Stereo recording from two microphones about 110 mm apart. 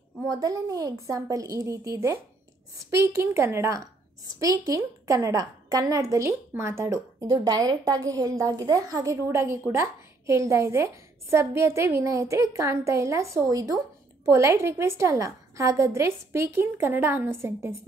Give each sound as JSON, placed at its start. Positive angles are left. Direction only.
{"t": 0.2, "sound": "a woman's voice", "side_deg": -35}
{"t": 7.2, "sound": "a woman's voice", "side_deg": -45}